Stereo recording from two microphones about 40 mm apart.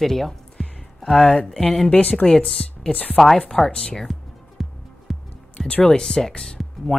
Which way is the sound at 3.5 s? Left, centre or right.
Centre.